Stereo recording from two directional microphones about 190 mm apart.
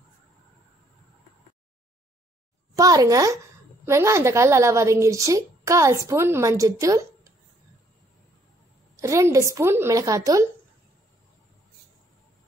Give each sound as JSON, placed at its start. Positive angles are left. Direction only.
{"t": 2.7, "sound": "a child's voice", "side_deg": -20}
{"t": 8.9, "sound": "a woman's voice", "side_deg": -15}